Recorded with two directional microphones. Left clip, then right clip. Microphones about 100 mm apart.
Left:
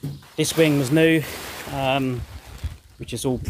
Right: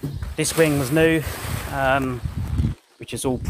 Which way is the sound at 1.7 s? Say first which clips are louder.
Right 2 dB; 35° left (ahead or behind).